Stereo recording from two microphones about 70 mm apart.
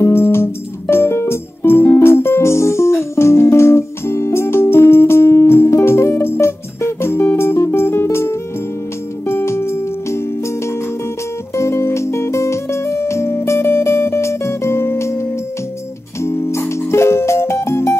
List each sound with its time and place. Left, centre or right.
0.0 s music: left
11.5 s music: left